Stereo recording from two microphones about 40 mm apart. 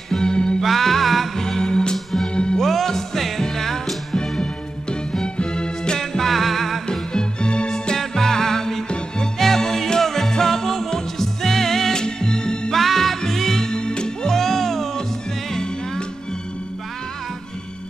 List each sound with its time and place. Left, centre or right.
0.2 s music: left
0.6 s music: centre; by 2.6 s left
2.6 s music: centre
5.2 s music: left; by 6.8 s centre
6.9 s music: left
12.7 s music: centre